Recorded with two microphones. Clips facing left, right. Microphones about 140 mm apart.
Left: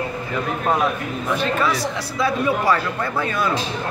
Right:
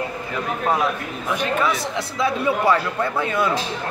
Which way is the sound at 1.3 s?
15° right (ahead or behind).